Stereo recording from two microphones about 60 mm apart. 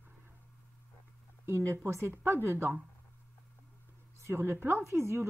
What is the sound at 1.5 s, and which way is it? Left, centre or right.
Speech, right.